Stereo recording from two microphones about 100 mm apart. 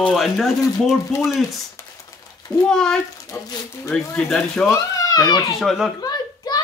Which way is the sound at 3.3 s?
25° left (ahead or behind).